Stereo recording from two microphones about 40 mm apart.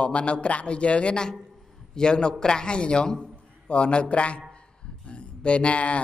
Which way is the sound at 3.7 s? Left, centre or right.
Left.